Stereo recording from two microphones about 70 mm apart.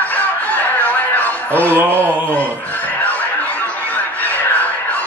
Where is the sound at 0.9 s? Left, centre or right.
Left.